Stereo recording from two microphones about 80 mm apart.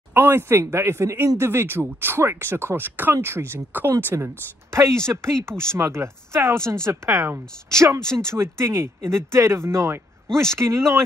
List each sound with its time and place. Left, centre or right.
0.1 s speech: right
8.0 s speech: centre
8.3 s speech: right